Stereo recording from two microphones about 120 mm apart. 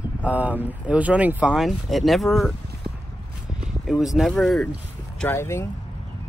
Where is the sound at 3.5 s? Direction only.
5° right (ahead or behind).